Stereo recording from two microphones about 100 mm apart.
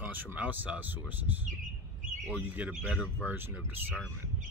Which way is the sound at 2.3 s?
15° right (ahead or behind).